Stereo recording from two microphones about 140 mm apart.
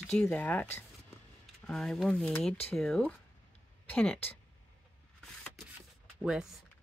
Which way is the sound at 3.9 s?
10° left (ahead or behind).